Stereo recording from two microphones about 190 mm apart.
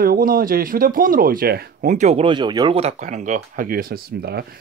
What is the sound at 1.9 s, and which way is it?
Speech, 35° right (ahead or behind).